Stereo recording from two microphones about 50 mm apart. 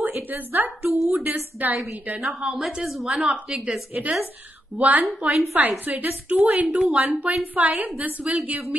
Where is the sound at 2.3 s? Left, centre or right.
Right.